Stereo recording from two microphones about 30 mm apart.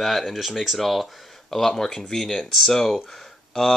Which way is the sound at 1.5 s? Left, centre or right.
Centre.